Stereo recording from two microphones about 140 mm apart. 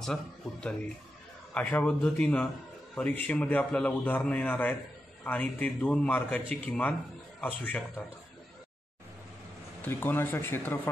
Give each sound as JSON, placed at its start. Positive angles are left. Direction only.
{"t": 0.0, "sound": "a man's voice", "side_deg": 5}
{"t": 9.8, "sound": "a man's voice", "side_deg": 15}